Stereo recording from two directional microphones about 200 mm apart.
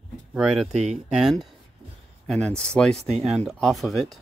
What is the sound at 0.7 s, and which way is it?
Speech, 35° right (ahead or behind).